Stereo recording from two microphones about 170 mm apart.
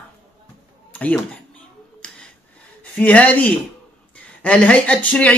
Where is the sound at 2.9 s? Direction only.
10° left (ahead or behind).